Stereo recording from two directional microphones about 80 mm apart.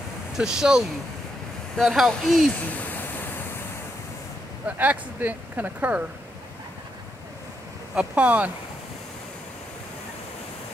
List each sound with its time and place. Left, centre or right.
0.4 s speech: centre
2.6 s a sound: left
4.6 s speech: right
7.9 s speech: centre